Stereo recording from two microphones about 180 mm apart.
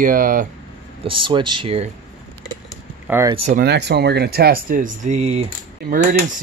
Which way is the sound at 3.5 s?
65° right (ahead or behind).